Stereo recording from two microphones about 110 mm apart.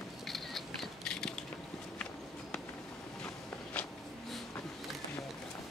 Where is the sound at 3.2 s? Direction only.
15° left (ahead or behind).